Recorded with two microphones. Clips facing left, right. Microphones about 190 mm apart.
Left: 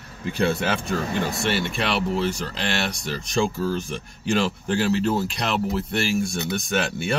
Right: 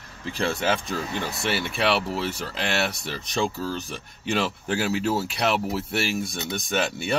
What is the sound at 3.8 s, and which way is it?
Speech, centre (ahead or behind).